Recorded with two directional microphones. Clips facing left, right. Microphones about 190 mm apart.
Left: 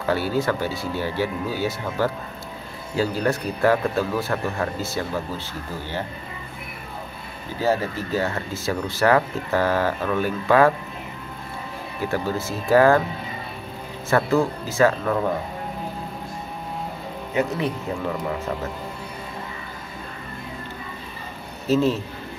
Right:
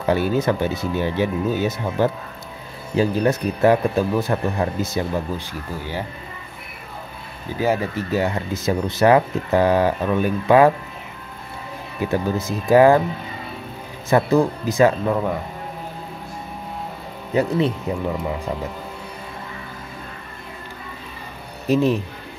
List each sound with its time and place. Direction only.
0.0 s speech: 20° right (ahead or behind)
7.6 s speech: 15° right (ahead or behind)
12.0 s speech: 20° right (ahead or behind)
14.0 s speech: 15° right (ahead or behind)
17.4 s speech: 30° right (ahead or behind)
21.6 s speech: 15° right (ahead or behind)